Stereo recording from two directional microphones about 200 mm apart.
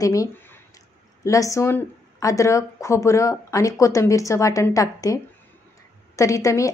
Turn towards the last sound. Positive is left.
turn(degrees=15)  # may be behind; listen again after turning